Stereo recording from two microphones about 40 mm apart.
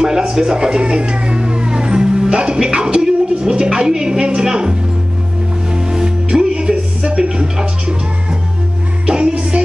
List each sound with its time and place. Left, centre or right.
0.0 s speech: centre
5.7 s music: centre